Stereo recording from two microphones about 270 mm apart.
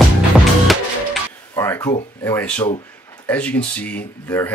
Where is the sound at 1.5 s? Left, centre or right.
Centre.